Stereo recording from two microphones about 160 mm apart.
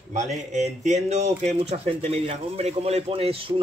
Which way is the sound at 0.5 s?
45° right (ahead or behind).